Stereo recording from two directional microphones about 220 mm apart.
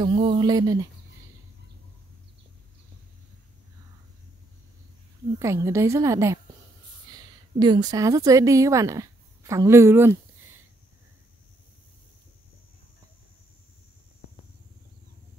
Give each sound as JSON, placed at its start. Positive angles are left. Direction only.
{"t": 0.0, "sound": "speech", "side_deg": -25}
{"t": 5.4, "sound": "a woman's voice", "side_deg": -15}